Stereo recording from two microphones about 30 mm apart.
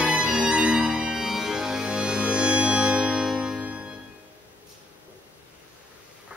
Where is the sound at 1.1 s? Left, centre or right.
Centre.